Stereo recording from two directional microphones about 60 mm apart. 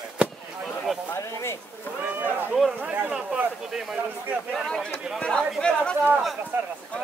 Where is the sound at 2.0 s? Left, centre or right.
Right; by 4.0 s centre.